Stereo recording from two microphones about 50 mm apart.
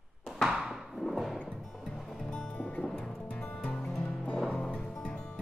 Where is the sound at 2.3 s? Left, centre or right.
Left.